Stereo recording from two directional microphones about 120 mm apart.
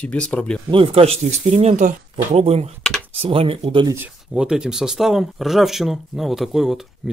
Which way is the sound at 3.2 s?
50° right (ahead or behind).